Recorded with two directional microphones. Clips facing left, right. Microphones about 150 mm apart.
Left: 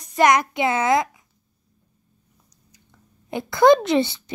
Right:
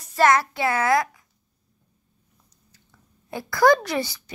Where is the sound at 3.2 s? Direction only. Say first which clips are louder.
Left 3 dB; 20° left (ahead or behind).